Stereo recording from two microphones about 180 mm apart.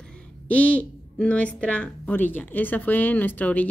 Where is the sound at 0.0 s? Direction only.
5° left (ahead or behind).